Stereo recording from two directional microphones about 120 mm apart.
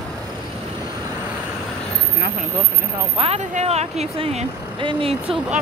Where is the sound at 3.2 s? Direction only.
65° right (ahead or behind).